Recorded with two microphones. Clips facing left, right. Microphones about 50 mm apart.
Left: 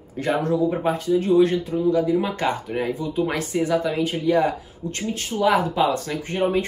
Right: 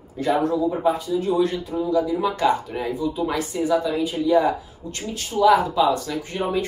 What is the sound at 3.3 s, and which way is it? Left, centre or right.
A woman's voice, left.